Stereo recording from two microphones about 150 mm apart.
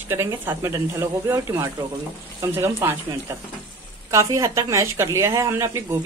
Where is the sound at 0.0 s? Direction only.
15° right (ahead or behind).